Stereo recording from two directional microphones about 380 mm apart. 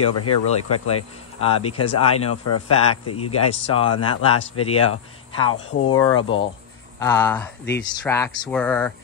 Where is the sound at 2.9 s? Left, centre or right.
Left.